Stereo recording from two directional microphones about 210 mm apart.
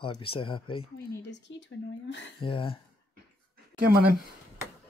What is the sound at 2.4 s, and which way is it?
Speech, 25° left (ahead or behind).